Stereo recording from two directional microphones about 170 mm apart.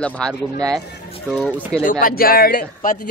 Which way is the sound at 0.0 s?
5° left (ahead or behind).